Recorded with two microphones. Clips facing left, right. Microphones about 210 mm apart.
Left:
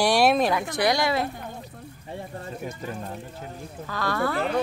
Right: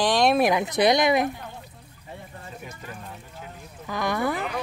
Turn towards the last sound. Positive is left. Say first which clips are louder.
# even
turn(degrees=-15)  # may be behind; listen again after turning